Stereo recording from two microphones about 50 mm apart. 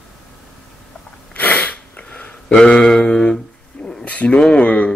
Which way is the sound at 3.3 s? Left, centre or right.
Centre.